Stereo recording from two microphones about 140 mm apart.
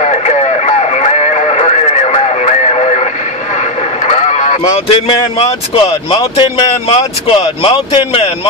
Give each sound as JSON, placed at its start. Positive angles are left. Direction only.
{"t": 0.0, "sound": "music", "side_deg": 50}
{"t": 4.1, "sound": "a sound", "side_deg": 55}
{"t": 5.0, "sound": "speech", "side_deg": 40}
{"t": 7.2, "sound": "speech", "side_deg": 35}